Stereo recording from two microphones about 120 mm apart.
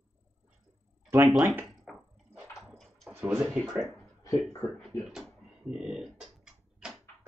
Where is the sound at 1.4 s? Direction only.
15° right (ahead or behind).